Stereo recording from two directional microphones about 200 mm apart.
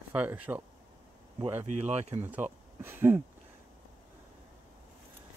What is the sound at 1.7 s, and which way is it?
Speech, 35° right (ahead or behind).